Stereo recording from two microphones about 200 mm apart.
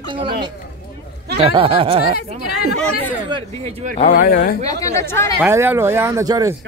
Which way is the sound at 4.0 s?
45° left (ahead or behind).